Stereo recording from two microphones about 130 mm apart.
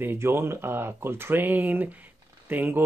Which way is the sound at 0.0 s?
15° right (ahead or behind).